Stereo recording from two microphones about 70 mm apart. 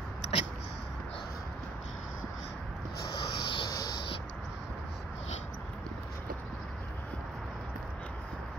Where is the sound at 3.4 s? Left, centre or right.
Left.